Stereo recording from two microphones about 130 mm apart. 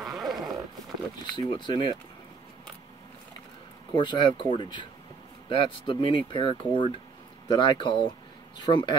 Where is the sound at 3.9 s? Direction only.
35° left (ahead or behind).